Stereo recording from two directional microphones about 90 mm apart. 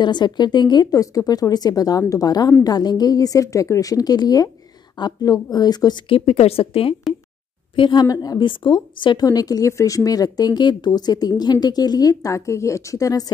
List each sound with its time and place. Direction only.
0.0 s a woman's voice: 55° left (ahead or behind)
6.0 s a woman's voice: 90° left
7.7 s a woman's voice: 60° left (ahead or behind); by 8.5 s 45° left (ahead or behind)
8.5 s a woman's voice: 65° left (ahead or behind); by 13.3 s 40° left (ahead or behind)